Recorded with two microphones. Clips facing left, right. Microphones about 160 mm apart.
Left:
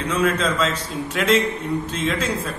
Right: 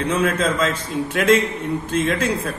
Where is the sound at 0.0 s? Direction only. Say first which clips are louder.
Right 1 dB; 55° right (ahead or behind).